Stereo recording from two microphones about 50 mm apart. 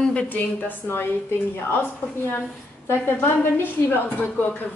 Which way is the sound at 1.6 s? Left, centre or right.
Left.